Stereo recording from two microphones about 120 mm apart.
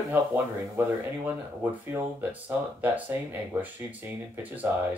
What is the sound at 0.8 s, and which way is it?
Speech, 15° right (ahead or behind).